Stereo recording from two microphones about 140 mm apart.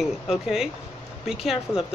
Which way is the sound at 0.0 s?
5° right (ahead or behind).